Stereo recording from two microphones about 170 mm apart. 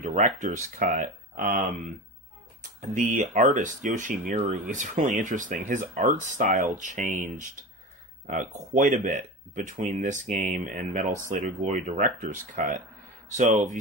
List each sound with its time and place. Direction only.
0.0 s speech: 45° right (ahead or behind)
2.8 s speech: 45° right (ahead or behind)
8.3 s speech: 45° right (ahead or behind)